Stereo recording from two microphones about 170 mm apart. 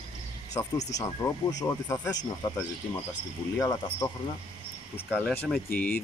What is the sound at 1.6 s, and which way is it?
Speech, 20° left (ahead or behind).